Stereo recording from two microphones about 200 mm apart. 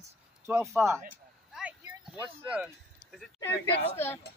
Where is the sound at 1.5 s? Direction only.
5° right (ahead or behind).